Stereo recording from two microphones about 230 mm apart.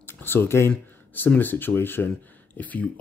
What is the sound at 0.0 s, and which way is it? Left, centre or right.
Speech, centre.